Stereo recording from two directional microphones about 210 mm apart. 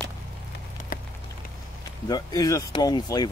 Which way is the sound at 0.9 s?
40° left (ahead or behind).